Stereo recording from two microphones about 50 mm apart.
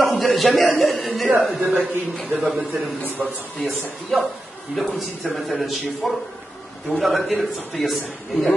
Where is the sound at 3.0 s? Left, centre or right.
Right.